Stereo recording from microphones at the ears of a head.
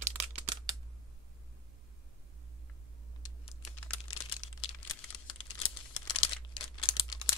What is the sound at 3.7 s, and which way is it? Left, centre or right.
Crumpling, left.